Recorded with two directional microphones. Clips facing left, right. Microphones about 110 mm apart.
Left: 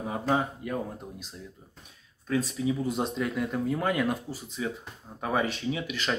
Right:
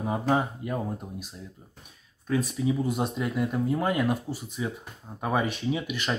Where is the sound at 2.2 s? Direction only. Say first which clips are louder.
Right 1 dB; 20° right (ahead or behind).